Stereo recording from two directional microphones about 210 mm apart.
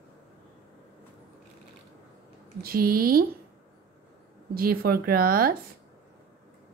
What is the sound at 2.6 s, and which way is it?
Speech, 45° right (ahead or behind).